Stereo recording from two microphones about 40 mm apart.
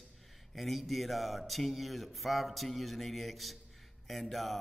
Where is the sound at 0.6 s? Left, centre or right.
Centre.